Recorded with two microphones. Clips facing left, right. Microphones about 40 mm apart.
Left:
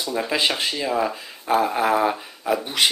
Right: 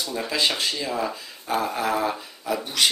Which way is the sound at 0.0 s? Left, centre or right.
Centre.